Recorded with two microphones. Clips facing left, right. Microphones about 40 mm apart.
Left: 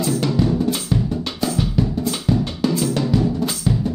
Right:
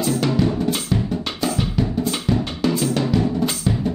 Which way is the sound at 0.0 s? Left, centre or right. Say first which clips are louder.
Even; centre.